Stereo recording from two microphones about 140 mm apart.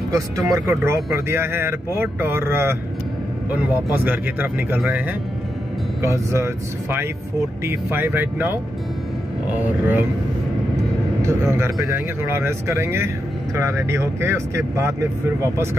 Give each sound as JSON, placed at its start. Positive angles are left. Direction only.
{"t": 0.1, "sound": "speech", "side_deg": -20}
{"t": 6.0, "sound": "speech", "side_deg": -20}
{"t": 11.2, "sound": "speech", "side_deg": -20}